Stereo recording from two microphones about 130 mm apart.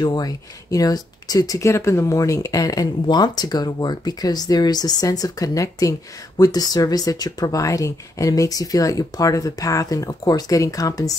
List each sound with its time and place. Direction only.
0.0 s speech: 30° left (ahead or behind)